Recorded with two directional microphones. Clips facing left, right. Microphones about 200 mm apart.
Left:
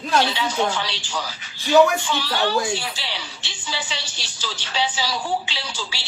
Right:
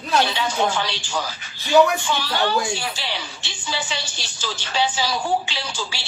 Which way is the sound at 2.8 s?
50° right (ahead or behind).